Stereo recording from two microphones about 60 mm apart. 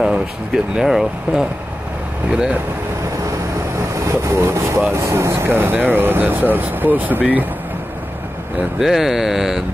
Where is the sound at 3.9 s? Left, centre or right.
Right.